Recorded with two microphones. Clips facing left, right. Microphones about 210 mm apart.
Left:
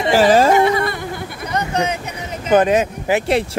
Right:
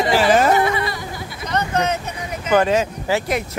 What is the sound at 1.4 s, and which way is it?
Speech, 10° left (ahead or behind).